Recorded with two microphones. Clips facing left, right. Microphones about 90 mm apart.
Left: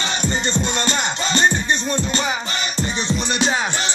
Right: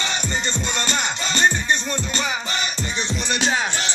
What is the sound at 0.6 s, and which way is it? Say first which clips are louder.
Music: left 3 dB; 30° left (ahead or behind).